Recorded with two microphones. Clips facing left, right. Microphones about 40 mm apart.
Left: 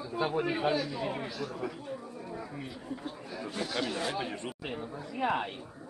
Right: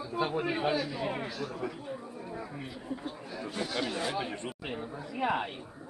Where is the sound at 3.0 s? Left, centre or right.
Centre.